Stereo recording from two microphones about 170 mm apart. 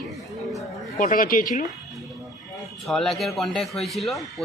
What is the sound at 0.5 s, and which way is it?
Speech, 50° left (ahead or behind).